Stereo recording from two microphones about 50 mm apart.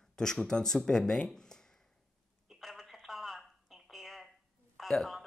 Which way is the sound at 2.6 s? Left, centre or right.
Centre.